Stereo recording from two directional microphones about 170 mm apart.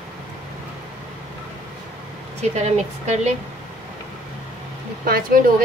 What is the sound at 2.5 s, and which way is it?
Speech, 40° right (ahead or behind).